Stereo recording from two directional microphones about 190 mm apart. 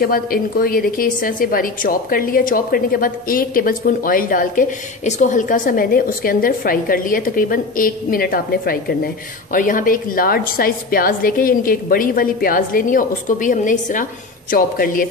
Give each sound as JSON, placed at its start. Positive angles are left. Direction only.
{"t": 0.0, "sound": "a woman's voice", "side_deg": 50}